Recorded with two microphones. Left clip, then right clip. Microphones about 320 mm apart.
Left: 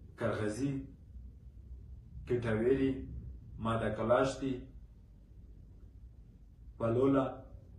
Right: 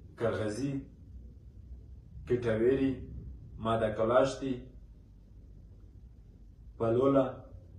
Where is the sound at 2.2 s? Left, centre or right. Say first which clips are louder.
Right 3 dB; centre.